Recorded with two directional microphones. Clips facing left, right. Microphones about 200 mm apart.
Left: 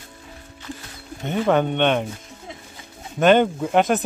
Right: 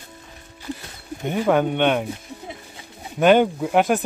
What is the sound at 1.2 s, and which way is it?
Speech, 10° right (ahead or behind).